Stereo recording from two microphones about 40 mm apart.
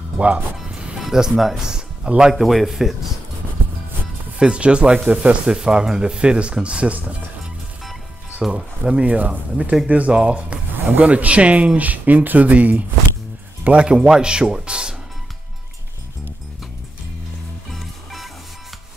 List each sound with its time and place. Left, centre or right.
0.2 s speech: right
0.9 s music: centre
1.3 s speech: centre
1.6 s speech: centre
2.3 s speech: centre
4.4 s speech: right
8.4 s speech: centre
9.0 s speech: right
10.8 s speech: right
13.7 s speech: right
13.9 s speech: centre
17.6 s music: centre